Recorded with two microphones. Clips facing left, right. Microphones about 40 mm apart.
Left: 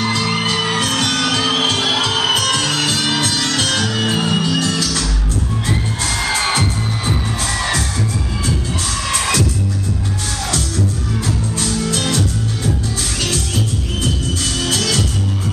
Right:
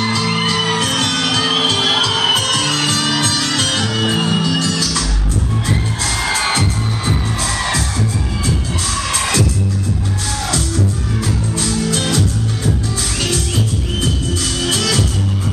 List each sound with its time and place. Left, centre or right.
0.2 s music: centre
3.7 s music: centre
6.2 s music: centre